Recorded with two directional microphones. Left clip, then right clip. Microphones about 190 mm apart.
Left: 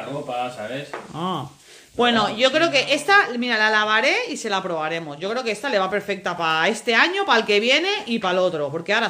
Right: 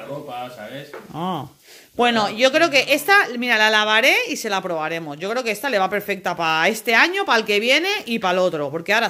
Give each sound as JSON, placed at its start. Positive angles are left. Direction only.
{"t": 2.0, "sound": "a woman's voice", "side_deg": -30}